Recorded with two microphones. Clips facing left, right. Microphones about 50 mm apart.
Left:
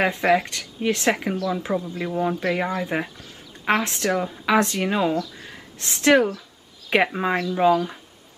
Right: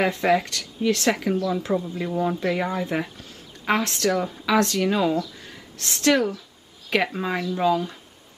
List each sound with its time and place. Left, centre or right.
0.0 s speech: centre